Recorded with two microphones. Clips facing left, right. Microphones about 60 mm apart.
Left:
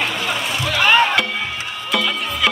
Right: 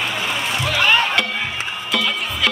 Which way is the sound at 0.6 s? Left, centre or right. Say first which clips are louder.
Left 1 dB; centre.